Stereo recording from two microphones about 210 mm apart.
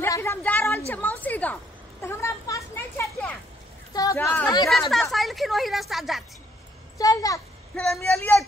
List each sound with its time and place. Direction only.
0.0 s a sound: 10° left (ahead or behind)
3.9 s speech: 15° left (ahead or behind)
5.1 s speech: centre (ahead or behind)
7.0 s a child's voice: 15° left (ahead or behind)
7.7 s speech: centre (ahead or behind)